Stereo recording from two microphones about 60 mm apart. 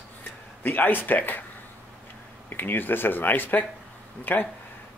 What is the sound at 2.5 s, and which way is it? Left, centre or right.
A man's voice, left.